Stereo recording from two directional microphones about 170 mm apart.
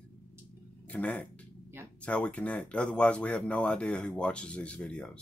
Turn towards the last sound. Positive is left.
turn(degrees=5)  # may be behind; listen again after turning